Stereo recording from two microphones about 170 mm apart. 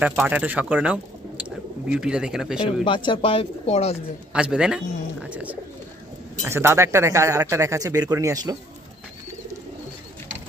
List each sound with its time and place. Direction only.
0.0 s speech: 5° right (ahead or behind)
2.8 s speech: 30° left (ahead or behind)
4.3 s speech: 5° right (ahead or behind); by 8.5 s 20° right (ahead or behind)